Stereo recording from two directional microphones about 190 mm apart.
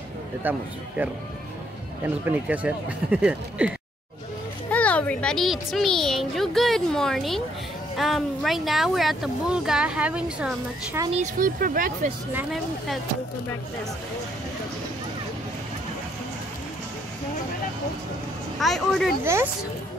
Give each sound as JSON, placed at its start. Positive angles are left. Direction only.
{"t": 0.4, "sound": "speech", "side_deg": -10}
{"t": 4.6, "sound": "speech", "side_deg": 5}
{"t": 11.3, "sound": "speech", "side_deg": -45}
{"t": 12.3, "sound": "speech", "side_deg": -10}
{"t": 18.6, "sound": "speech", "side_deg": 0}
{"t": 19.2, "sound": "speech", "side_deg": -15}